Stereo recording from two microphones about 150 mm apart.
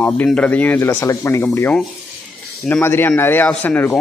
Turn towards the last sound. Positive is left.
turn(degrees=10)  # may be behind; listen again after turning